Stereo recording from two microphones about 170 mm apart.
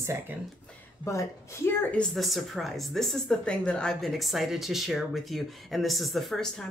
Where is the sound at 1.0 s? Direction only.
15° left (ahead or behind).